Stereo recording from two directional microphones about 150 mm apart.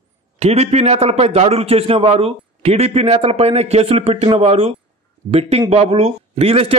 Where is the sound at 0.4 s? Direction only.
45° right (ahead or behind).